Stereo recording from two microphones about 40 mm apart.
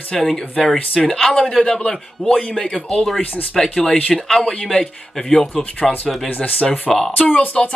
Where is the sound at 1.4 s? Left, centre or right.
Left.